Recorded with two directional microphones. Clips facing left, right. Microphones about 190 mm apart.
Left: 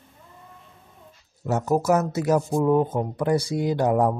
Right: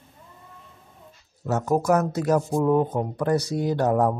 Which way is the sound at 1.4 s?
10° left (ahead or behind).